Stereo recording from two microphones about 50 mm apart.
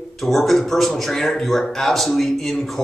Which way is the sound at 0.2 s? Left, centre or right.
Centre.